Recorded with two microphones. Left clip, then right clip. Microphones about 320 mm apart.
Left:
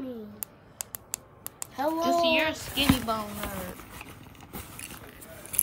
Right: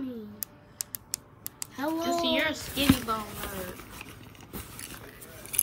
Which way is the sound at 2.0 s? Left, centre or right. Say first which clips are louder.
Left 3 dB; left.